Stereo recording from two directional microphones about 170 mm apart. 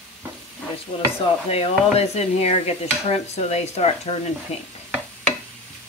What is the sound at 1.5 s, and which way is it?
Stir, 35° left (ahead or behind).